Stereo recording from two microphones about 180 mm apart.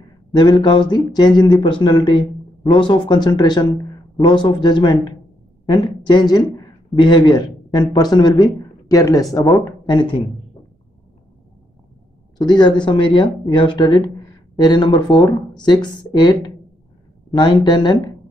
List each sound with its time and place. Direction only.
0.3 s speech: 25° left (ahead or behind)
12.4 s speech: 25° left (ahead or behind)